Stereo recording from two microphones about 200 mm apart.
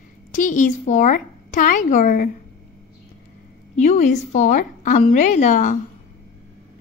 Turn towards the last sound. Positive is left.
turn(degrees=40)  # may be behind; listen again after turning